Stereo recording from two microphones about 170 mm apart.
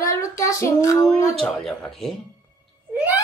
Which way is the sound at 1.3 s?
5° left (ahead or behind).